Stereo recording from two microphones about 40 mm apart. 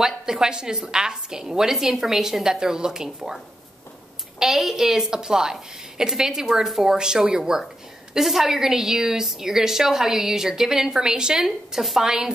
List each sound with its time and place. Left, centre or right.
0.0 s a woman's voice: centre
4.4 s a woman's voice: centre